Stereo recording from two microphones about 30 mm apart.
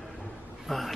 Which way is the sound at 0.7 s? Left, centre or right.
Centre.